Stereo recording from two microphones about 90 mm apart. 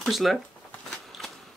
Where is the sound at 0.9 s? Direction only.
Centre (ahead or behind).